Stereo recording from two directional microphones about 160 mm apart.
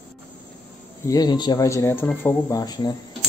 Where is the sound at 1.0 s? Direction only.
25° left (ahead or behind).